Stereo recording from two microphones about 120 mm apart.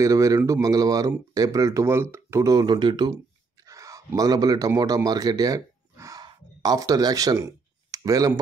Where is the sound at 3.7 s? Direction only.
25° right (ahead or behind).